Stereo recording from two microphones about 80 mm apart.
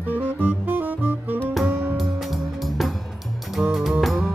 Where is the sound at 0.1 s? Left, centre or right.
Right.